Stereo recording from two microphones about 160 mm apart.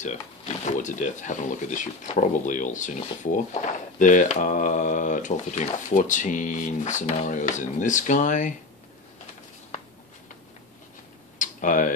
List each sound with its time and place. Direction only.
0.0 s speech: 50° left (ahead or behind)
11.3 s tick-tock: 55° left (ahead or behind)